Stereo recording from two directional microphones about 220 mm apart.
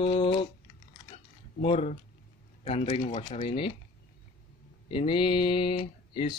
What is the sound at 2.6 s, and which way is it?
Speech, 30° left (ahead or behind).